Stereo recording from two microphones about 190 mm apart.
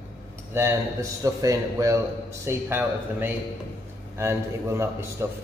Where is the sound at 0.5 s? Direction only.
15° right (ahead or behind).